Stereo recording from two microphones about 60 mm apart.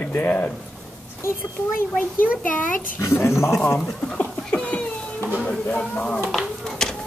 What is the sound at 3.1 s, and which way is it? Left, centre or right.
Speech, left.